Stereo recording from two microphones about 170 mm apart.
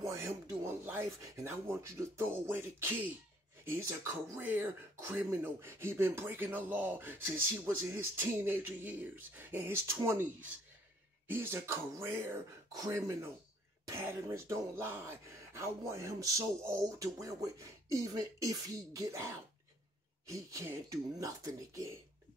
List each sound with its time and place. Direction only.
0.0 s speech: 15° right (ahead or behind)